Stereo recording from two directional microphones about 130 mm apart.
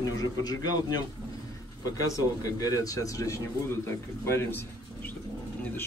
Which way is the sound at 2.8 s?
25° left (ahead or behind).